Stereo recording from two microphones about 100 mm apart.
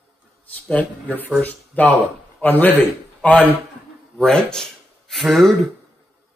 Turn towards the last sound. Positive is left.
turn(degrees=0)  # may be behind; listen again after turning